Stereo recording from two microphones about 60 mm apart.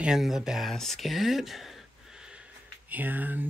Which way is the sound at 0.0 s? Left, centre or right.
Centre.